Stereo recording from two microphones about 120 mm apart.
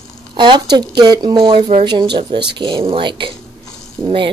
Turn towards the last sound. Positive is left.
turn(degrees=-45)  # may be behind; listen again after turning